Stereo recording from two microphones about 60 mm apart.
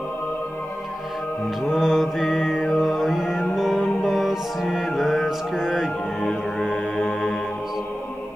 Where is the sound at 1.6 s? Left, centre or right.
Centre.